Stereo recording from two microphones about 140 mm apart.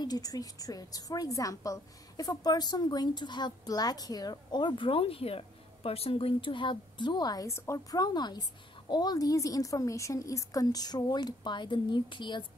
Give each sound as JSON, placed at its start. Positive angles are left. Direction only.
{"t": 0.0, "sound": "a woman's voice", "side_deg": 25}